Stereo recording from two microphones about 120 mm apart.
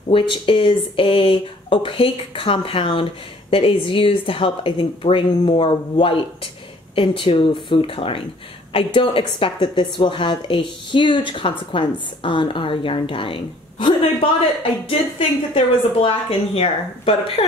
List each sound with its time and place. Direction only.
0.1 s a woman's voice: 45° left (ahead or behind)